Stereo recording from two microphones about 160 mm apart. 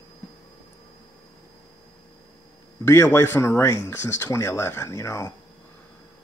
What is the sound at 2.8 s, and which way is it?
Speech, 15° left (ahead or behind).